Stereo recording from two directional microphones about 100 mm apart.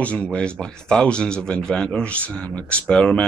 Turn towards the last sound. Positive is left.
turn(degrees=10)  # may be behind; listen again after turning